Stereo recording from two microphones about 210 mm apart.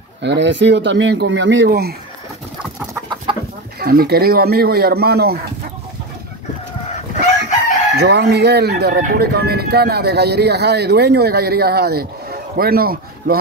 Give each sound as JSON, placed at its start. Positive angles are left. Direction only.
{"t": 0.2, "sound": "speech", "side_deg": -55}
{"t": 2.9, "sound": "chicken", "side_deg": -20}
{"t": 3.8, "sound": "speech", "side_deg": -45}
{"t": 7.9, "sound": "speech", "side_deg": -50}